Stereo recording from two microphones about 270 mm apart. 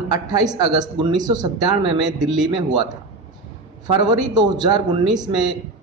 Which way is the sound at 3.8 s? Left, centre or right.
Centre.